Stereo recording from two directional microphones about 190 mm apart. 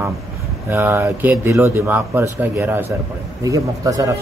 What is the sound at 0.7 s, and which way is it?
Speech, 10° right (ahead or behind).